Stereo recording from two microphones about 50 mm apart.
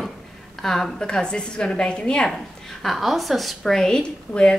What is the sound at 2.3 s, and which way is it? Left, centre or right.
A woman's voice, centre.